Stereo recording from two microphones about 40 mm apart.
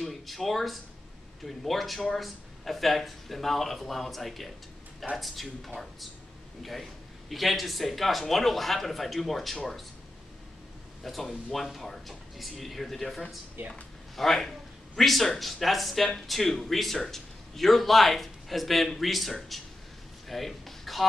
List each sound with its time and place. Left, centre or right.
0.0 s speech: centre
11.1 s speech: centre
20.2 s a sound: centre